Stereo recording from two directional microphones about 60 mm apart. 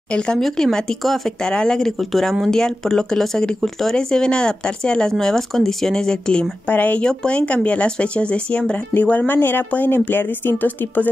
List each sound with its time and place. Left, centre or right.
0.4 s speech: centre
6.7 s a woman's voice: left